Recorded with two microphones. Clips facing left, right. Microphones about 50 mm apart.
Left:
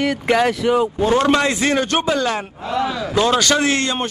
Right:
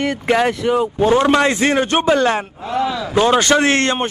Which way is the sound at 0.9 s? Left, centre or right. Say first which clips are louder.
Right 2 dB; centre.